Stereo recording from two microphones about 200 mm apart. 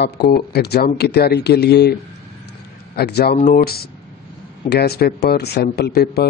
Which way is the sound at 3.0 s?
55° left (ahead or behind).